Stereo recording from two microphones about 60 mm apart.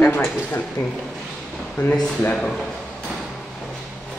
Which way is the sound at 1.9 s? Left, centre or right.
Left.